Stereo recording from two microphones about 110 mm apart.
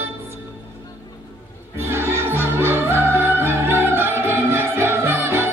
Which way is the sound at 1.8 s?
20° right (ahead or behind).